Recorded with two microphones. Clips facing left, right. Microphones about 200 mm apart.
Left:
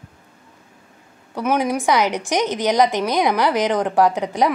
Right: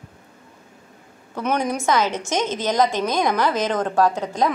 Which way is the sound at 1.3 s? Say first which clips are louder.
Left 3 dB; 10° left (ahead or behind).